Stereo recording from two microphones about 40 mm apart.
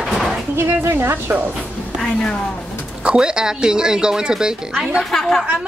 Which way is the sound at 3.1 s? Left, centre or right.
Centre.